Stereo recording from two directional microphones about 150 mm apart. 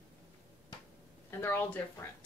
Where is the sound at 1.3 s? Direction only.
15° left (ahead or behind).